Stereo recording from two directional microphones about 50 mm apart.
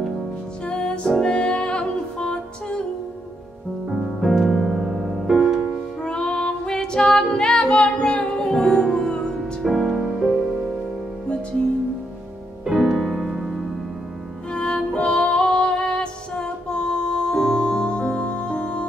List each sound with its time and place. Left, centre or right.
0.7 s music: centre
3.9 s music: centre
6.0 s female singing: centre
9.7 s music: centre
12.6 s music: centre
14.5 s music: left
15.0 s female singing: centre